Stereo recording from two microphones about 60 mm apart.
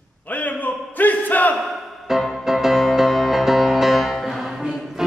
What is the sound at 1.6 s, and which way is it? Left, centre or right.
Music, centre.